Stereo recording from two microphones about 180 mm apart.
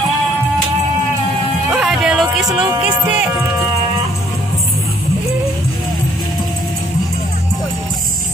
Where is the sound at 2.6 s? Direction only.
5° right (ahead or behind).